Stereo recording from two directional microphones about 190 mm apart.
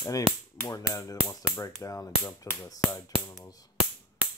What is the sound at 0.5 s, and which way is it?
Speech, 15° left (ahead or behind).